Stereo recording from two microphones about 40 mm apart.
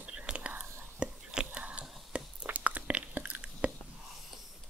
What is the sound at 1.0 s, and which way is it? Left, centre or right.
Whispering, right.